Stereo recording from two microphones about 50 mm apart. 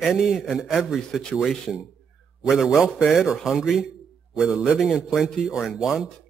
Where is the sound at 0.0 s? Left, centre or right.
Centre.